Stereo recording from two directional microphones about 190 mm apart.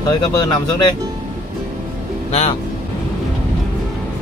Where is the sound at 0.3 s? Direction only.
20° left (ahead or behind).